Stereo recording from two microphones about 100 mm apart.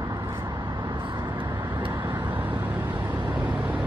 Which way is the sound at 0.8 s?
55° right (ahead or behind).